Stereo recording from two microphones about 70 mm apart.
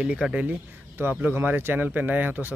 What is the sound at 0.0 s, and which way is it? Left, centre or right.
Speech, centre.